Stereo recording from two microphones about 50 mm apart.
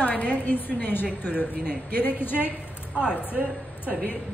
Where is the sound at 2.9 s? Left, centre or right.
Centre.